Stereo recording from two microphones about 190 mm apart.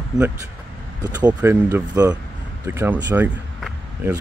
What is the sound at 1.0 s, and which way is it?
Speech, 20° right (ahead or behind).